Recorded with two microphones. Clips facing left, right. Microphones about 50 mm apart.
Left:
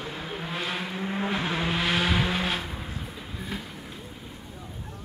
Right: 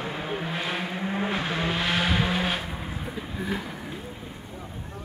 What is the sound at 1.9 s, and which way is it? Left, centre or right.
Vehicle, centre.